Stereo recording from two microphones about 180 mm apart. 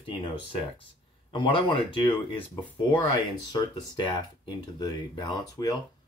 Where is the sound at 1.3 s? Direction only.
25° left (ahead or behind).